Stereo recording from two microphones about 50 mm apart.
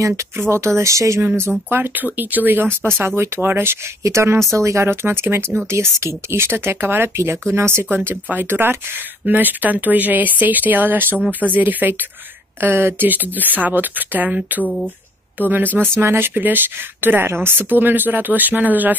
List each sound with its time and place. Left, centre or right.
0.0 s speech: right
1.7 s speech: right
4.0 s speech: right
4.8 s speech: right
5.7 s speech: right
6.8 s speech: right
7.2 s speech: right
7.9 s speech: right
9.2 s speech: right
12.5 s speech: right
17.6 s speech: right